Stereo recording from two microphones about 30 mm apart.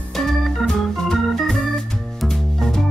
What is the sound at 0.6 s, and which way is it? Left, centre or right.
Organ, centre.